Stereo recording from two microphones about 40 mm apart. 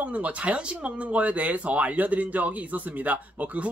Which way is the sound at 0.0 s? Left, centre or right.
Right.